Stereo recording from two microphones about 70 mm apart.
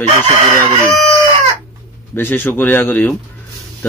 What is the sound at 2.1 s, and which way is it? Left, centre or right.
Speech, left.